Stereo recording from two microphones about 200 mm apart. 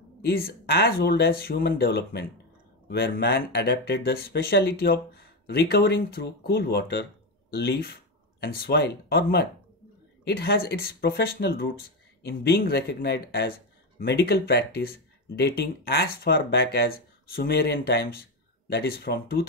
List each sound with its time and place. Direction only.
0.2 s speech: 50° left (ahead or behind)